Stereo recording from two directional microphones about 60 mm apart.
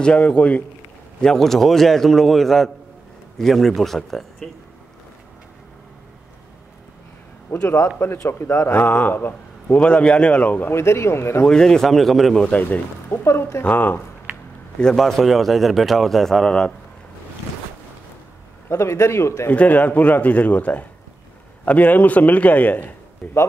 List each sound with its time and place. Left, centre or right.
0.0 s a man's voice: centre
1.2 s a man's voice: centre
7.6 s a man's voice: left
8.7 s speech: left
9.8 s a man's voice: centre
10.7 s speech: left
11.4 s a man's voice: centre
12.4 s a man's voice: left
13.1 s speech: left
13.7 s a man's voice: left
14.8 s a man's voice: centre
18.7 s speech: left
19.5 s a man's voice: left
23.2 s a man's voice: centre